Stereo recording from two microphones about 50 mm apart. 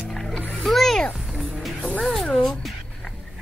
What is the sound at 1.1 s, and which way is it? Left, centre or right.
Music, centre.